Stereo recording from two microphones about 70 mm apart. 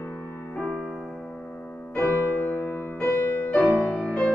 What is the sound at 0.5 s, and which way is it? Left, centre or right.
Music, centre.